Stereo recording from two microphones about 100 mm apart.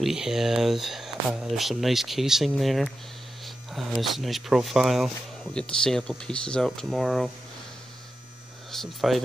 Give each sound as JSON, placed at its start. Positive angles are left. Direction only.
{"t": 0.0, "sound": "speech", "side_deg": -5}
{"t": 8.7, "sound": "speech", "side_deg": 0}